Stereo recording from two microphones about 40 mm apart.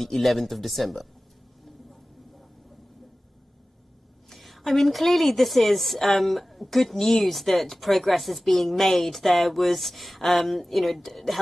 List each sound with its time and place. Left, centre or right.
0.0 s a woman's voice: centre
4.3 s a woman's voice: centre